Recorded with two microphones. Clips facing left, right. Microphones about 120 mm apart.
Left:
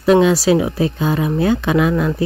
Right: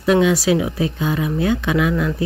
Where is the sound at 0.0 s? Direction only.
35° left (ahead or behind).